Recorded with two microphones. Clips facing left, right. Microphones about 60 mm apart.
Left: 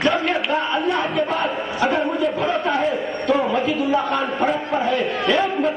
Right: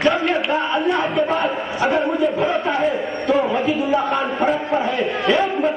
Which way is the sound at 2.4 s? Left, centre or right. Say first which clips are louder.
Right 1 dB; centre.